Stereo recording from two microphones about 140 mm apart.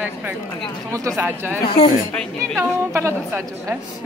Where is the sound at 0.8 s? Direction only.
20° right (ahead or behind).